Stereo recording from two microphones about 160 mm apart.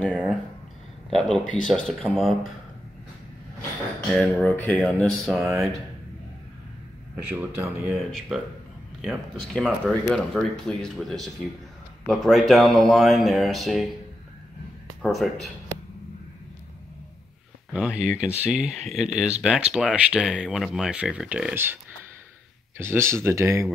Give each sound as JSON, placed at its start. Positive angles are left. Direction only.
{"t": 0.0, "sound": "speech", "side_deg": 5}
{"t": 4.1, "sound": "a sound", "side_deg": 10}
{"t": 7.2, "sound": "speech", "side_deg": -5}
{"t": 15.0, "sound": "speech", "side_deg": 0}
{"t": 17.7, "sound": "speech", "side_deg": -5}
{"t": 22.8, "sound": "speech", "side_deg": -15}